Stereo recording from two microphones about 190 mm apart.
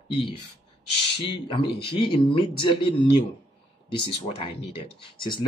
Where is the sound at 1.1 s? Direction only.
30° left (ahead or behind).